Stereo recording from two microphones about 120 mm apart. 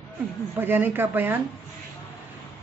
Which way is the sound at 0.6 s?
15° right (ahead or behind).